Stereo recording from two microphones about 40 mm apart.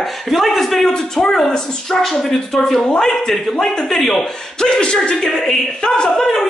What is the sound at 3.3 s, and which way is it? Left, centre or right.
A woman's voice, centre.